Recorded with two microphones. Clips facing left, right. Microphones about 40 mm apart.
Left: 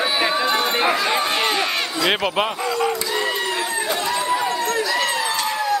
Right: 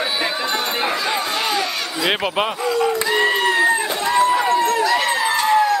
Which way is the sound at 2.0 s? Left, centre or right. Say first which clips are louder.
Right 1 dB; centre.